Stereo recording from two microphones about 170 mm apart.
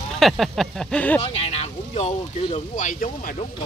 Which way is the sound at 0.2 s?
Centre (ahead or behind).